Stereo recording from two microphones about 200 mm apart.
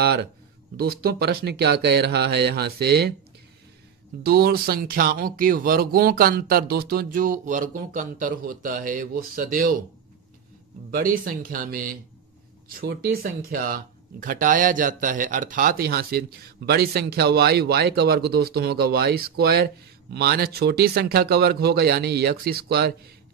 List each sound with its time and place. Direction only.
0.0 s speech: 50° right (ahead or behind)
4.2 s speech: 50° right (ahead or behind)
10.9 s speech: 45° right (ahead or behind)